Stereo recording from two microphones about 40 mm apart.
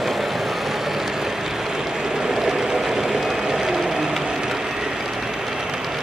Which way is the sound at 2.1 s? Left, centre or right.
Centre.